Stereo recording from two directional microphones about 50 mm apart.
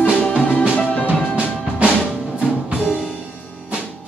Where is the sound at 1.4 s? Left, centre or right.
Right.